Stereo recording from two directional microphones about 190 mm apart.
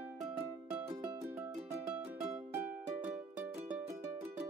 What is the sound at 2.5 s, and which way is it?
Music, 10° right (ahead or behind).